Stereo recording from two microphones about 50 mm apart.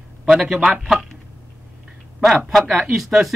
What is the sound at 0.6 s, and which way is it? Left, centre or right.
Speech, centre.